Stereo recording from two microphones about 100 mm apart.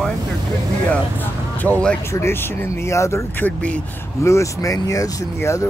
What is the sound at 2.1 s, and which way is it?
Speech, 25° left (ahead or behind).